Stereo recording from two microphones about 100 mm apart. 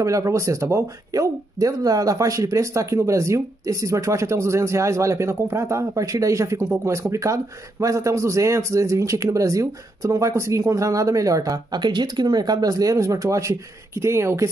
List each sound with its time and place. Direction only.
0.0 s a man's voice: 30° right (ahead or behind)